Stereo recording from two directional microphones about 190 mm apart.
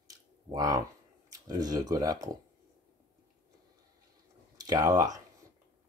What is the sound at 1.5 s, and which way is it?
Speech, 20° right (ahead or behind).